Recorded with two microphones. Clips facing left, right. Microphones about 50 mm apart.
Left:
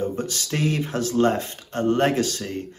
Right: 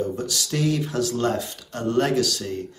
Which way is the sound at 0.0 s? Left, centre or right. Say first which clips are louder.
Even; left.